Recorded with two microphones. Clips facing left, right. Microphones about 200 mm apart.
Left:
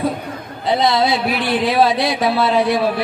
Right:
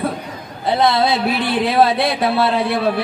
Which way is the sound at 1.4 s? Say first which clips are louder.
Even; 55° right (ahead or behind).